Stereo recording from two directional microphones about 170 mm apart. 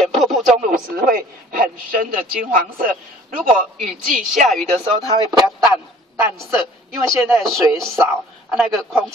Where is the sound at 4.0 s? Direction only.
50° right (ahead or behind).